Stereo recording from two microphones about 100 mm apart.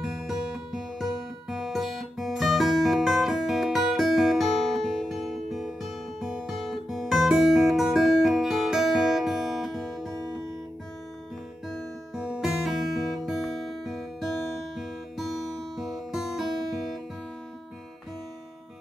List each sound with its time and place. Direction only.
0.0 s music: 5° right (ahead or behind)
11.7 s music: 5° right (ahead or behind)